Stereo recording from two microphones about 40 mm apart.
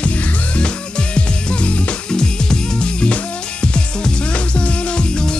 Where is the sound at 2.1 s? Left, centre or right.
Centre.